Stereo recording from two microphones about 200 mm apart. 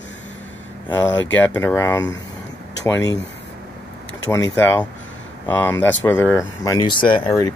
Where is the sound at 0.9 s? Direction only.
10° left (ahead or behind).